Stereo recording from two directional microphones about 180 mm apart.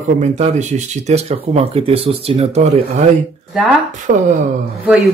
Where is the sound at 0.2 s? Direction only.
40° right (ahead or behind).